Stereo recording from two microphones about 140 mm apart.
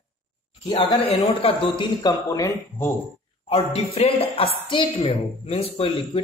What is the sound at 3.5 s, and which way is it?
A woman's voice, 45° left (ahead or behind).